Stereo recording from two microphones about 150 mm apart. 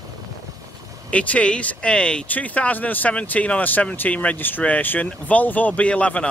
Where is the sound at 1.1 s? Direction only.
10° left (ahead or behind).